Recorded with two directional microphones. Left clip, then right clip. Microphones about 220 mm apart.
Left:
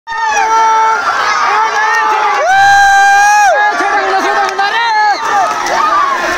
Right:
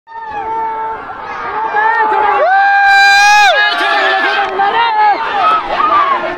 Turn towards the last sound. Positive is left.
turn(degrees=50)  # may be behind; listen again after turning